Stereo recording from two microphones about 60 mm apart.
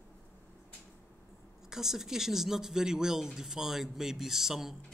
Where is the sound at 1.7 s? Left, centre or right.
Centre.